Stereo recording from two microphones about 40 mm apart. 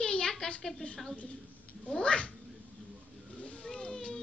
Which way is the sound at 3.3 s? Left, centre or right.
Left.